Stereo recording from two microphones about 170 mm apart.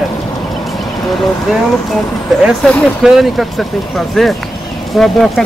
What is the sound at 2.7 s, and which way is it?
Speech, centre (ahead or behind).